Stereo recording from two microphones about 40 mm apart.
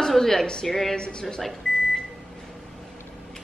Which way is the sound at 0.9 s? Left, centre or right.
Centre.